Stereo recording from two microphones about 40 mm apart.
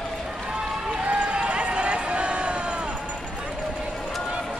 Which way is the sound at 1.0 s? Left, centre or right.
Right.